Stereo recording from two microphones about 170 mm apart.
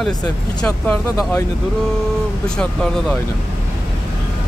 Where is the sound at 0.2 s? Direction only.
5° left (ahead or behind).